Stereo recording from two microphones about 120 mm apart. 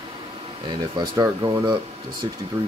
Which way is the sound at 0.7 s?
35° right (ahead or behind).